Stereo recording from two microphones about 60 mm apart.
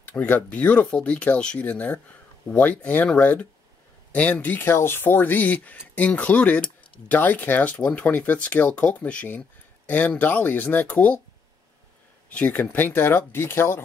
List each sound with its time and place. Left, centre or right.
0.2 s speech: left
12.3 s speech: left